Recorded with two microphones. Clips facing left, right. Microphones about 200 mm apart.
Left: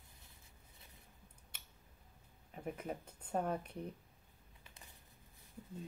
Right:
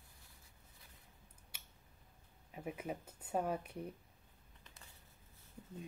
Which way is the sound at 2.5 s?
5° right (ahead or behind).